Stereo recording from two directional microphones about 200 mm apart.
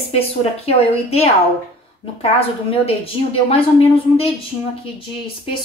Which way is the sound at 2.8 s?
30° left (ahead or behind).